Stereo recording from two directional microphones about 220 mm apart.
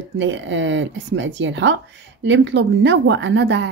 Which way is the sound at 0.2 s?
55° right (ahead or behind).